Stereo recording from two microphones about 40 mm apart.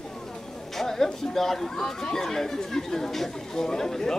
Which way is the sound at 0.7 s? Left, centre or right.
Centre.